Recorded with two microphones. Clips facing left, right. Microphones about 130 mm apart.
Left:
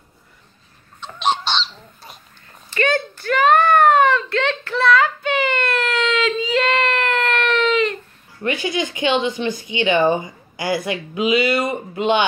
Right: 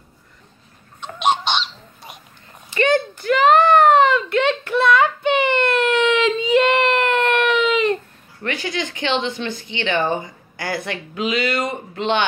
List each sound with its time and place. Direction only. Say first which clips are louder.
1.5 s goose: right 1 dB; 15° right (ahead or behind)
2.7 s a sound: right 3 dB; 20° right (ahead or behind)
8.4 s speech: left 3 dB; 15° left (ahead or behind)